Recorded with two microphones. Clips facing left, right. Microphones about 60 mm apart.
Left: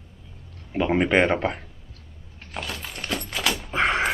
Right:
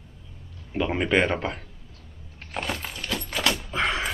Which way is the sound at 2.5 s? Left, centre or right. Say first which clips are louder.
Right 3 dB; centre.